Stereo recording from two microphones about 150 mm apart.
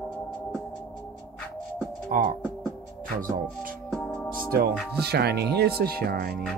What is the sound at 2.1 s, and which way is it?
Speech, 60° right (ahead or behind).